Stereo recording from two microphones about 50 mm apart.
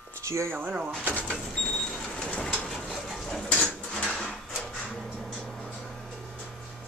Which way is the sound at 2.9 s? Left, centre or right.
Centre.